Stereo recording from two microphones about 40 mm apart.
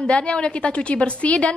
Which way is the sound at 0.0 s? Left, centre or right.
Left.